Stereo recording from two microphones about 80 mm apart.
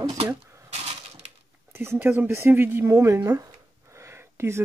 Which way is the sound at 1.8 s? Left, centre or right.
Right.